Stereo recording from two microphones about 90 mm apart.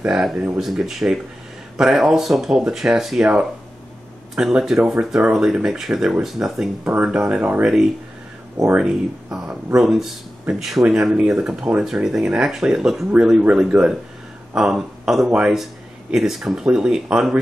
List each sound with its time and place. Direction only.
0.0 s speech: 5° right (ahead or behind)
4.4 s speech: 5° right (ahead or behind)
6.8 s speech: 20° right (ahead or behind)
7.1 s speech: 10° right (ahead or behind)
8.7 s speech: 10° right (ahead or behind)